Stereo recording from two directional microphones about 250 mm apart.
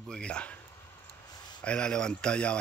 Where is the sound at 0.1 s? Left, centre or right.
Centre.